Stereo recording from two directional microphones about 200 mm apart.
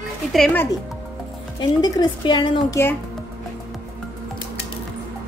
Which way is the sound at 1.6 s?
20° left (ahead or behind).